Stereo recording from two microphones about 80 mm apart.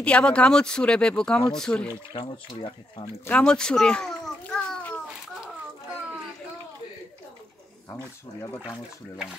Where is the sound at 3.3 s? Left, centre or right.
Centre.